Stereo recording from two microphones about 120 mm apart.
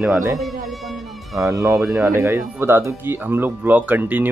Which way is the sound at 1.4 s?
25° right (ahead or behind).